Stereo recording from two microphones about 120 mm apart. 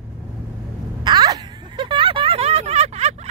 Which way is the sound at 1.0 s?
35° right (ahead or behind).